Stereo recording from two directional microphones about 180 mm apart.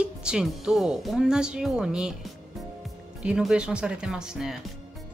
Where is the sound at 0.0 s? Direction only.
5° right (ahead or behind).